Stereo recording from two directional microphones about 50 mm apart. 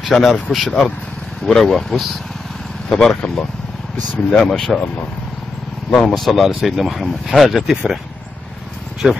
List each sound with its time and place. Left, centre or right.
0.1 s speech: centre
4.4 s speech: centre
5.9 s speech: centre
6.1 s speech: centre
9.0 s speech: centre